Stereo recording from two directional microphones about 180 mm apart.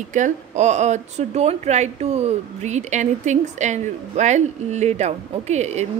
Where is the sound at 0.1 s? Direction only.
40° right (ahead or behind).